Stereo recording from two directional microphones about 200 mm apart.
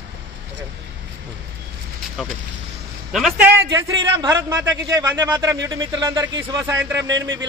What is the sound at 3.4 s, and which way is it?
A man's voice, 10° right (ahead or behind).